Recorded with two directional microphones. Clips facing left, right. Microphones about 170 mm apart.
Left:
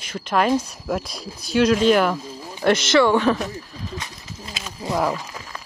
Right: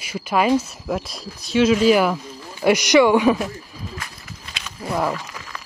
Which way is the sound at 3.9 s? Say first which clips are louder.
Left 2 dB; 20° left (ahead or behind).